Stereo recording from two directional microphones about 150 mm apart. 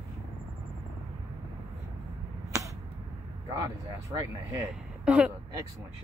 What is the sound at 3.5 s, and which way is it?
Speech, 25° right (ahead or behind).